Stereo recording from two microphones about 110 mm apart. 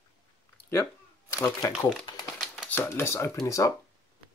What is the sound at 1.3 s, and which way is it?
Speech, 25° left (ahead or behind).